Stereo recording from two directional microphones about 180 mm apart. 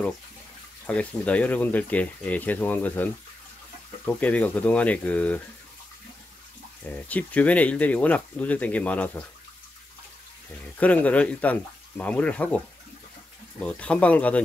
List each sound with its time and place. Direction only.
0.8 s speech: 5° left (ahead or behind)
6.8 s speech: 10° left (ahead or behind)
10.8 s speech: 10° left (ahead or behind)